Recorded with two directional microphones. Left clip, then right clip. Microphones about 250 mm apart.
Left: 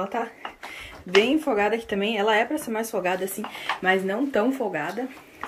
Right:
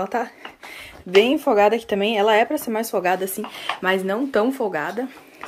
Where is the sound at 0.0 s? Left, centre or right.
Centre.